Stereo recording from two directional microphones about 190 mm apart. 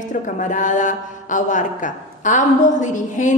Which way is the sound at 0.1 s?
40° left (ahead or behind).